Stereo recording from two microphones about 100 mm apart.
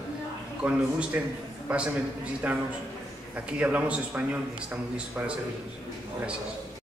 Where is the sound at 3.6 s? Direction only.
15° right (ahead or behind).